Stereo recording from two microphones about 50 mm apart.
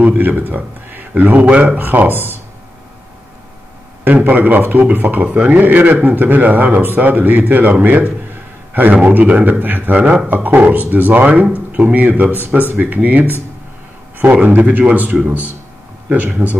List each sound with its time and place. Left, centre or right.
0.0 s a sound: right
0.4 s a man's voice: right
2.1 s speech: left
4.0 s a man's voice: right
5.2 s speech: right
5.6 s a man's voice: right
7.8 s a sound: right
9.0 s a man's voice: right